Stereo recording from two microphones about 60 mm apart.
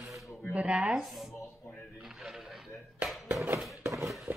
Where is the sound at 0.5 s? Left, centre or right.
Centre.